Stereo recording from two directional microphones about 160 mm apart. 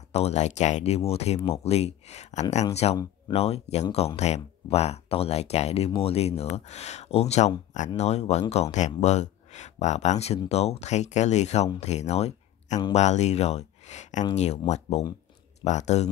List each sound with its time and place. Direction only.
0.1 s speech: 45° left (ahead or behind)